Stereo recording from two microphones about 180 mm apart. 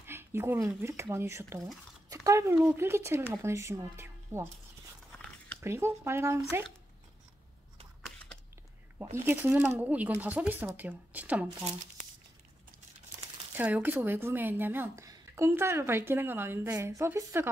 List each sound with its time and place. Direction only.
0.0 s speech: 15° right (ahead or behind)
2.0 s a sound: 15° right (ahead or behind)
2.8 s a woman's voice: 15° right (ahead or behind)
5.6 s a woman's voice: 15° right (ahead or behind)
9.1 s a woman's voice: 15° right (ahead or behind)
13.6 s a woman's voice: 10° right (ahead or behind)